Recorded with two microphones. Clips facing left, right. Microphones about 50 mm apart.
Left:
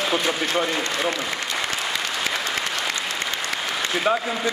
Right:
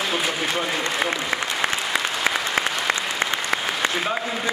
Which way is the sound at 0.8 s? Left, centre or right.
Centre.